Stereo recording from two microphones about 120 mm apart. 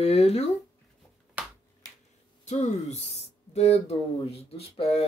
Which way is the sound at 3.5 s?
60° left (ahead or behind).